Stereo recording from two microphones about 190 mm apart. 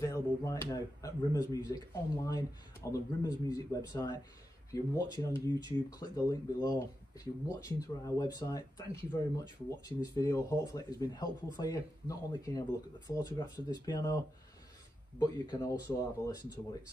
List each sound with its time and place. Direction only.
0.0 s speech: 15° left (ahead or behind)
5.2 s speech: 20° left (ahead or behind)